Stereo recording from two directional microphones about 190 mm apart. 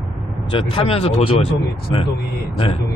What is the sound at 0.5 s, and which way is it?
A man's voice, 25° left (ahead or behind).